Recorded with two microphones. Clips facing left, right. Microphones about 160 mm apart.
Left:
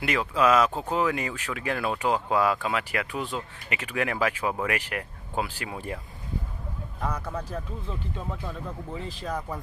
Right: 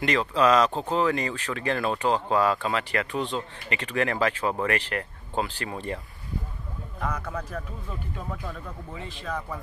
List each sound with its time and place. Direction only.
0.0 s speech: 10° left (ahead or behind)
8.9 s speech: 40° left (ahead or behind)